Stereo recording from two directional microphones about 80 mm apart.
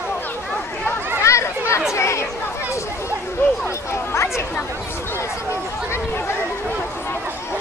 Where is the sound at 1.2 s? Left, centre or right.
Left.